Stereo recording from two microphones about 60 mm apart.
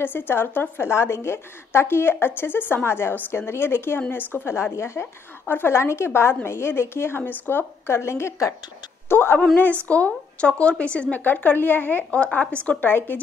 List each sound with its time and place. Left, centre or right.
0.0 s a woman's voice: left
9.8 s speech: left
12.6 s a woman's voice: left